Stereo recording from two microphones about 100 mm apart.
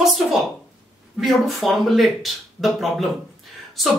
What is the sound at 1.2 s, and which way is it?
Speech, centre (ahead or behind).